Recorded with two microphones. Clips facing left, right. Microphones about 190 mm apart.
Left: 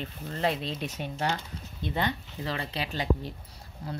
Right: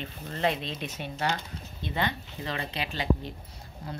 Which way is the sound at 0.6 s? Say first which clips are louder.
Left 2 dB; 40° left (ahead or behind).